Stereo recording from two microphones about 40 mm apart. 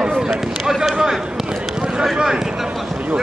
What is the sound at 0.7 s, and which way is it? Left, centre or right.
Basketball bounce, centre.